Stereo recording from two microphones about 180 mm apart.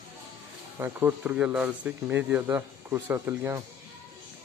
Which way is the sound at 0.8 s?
10° right (ahead or behind).